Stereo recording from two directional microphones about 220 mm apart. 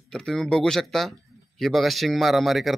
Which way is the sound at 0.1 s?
Centre (ahead or behind).